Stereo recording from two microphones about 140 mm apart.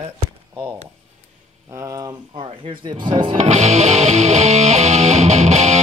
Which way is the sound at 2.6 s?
35° right (ahead or behind).